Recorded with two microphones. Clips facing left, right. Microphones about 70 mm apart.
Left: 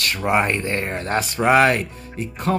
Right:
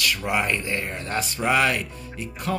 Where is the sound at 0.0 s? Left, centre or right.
Left.